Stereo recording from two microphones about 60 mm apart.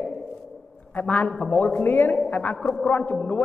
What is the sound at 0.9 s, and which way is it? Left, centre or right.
A man's voice, left.